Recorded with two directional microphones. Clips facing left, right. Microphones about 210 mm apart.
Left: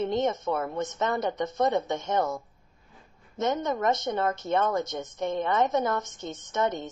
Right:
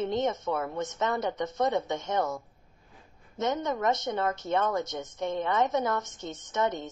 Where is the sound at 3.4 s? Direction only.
50° left (ahead or behind).